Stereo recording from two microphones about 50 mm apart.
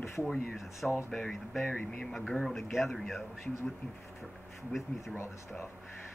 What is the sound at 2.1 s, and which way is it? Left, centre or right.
Speech, centre.